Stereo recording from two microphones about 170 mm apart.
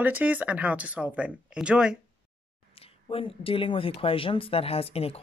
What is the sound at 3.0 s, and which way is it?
Speech, 30° left (ahead or behind).